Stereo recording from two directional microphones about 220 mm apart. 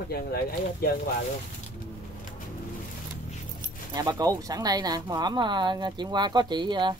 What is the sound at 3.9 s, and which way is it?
Speech, 20° right (ahead or behind).